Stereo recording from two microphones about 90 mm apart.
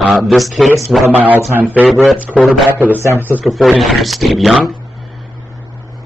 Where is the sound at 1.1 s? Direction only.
15° right (ahead or behind).